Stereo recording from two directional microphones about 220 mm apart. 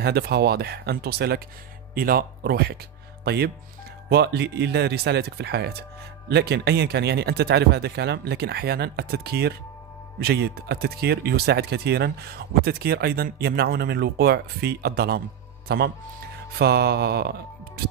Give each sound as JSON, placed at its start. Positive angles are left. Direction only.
{"t": 0.0, "sound": "speech", "side_deg": -45}